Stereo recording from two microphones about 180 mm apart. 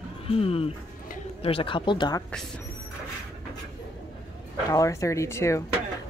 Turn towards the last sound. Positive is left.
turn(degrees=15)  # may be behind; listen again after turning